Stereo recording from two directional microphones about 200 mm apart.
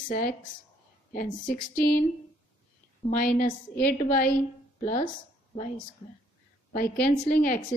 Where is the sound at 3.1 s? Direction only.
45° left (ahead or behind).